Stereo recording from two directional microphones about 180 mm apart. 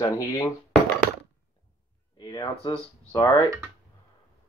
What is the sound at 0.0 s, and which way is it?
Speech, 15° left (ahead or behind).